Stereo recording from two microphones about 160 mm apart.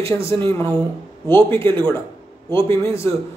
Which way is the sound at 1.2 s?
15° left (ahead or behind).